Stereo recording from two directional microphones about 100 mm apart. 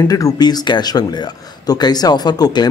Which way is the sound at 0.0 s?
35° left (ahead or behind).